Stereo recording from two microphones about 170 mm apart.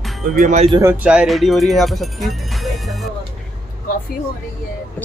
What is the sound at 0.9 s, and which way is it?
Speech, 5° right (ahead or behind).